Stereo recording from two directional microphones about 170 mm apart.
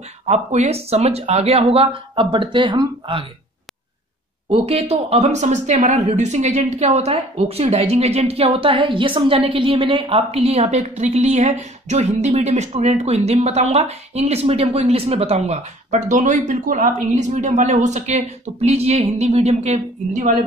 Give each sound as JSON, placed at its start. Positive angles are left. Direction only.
{"t": 0.3, "sound": "a woman's voice", "side_deg": -40}
{"t": 4.5, "sound": "a woman's voice", "side_deg": -35}